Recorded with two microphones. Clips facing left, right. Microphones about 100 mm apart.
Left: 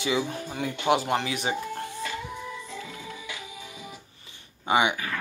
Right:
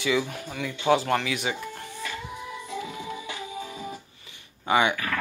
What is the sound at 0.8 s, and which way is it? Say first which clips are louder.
Speech: right 2 dB; 15° left (ahead or behind).